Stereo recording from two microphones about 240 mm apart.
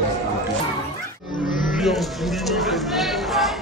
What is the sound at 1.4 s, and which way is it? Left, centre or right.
Music, left.